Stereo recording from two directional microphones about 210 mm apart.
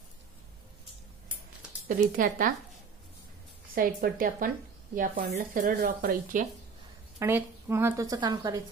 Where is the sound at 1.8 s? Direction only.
40° right (ahead or behind).